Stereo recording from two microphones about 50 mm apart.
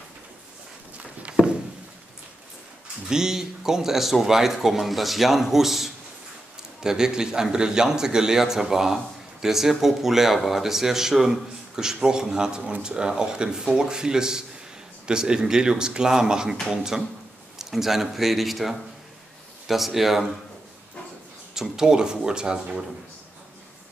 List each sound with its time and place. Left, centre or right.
3.1 s a man's voice: centre
21.5 s a man's voice: centre